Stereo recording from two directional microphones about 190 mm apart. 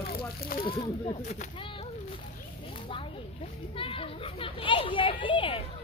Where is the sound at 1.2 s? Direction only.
40° left (ahead or behind).